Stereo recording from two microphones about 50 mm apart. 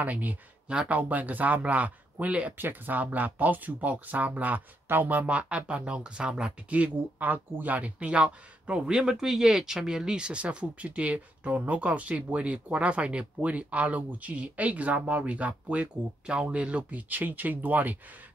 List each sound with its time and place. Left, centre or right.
0.0 s speech: right
0.7 s speech: centre
0.9 s speech: right
2.5 s speech: right
4.8 s a sound: right
5.2 s speech: right
6.7 s speech: right
17.1 s speech: right